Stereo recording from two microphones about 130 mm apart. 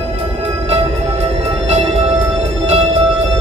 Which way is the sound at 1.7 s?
60° right (ahead or behind).